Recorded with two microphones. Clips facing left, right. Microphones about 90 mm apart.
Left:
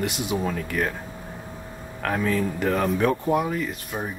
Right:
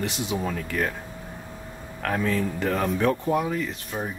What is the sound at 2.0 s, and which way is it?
Speech, 15° left (ahead or behind).